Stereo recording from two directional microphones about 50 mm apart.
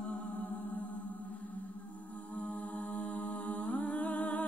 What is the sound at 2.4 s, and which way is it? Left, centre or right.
Music, left.